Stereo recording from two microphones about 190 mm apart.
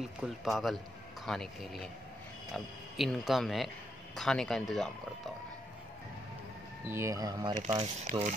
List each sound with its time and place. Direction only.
0.0 s speech: centre (ahead or behind)
6.9 s speech: 15° right (ahead or behind)
7.8 s speech: 35° right (ahead or behind)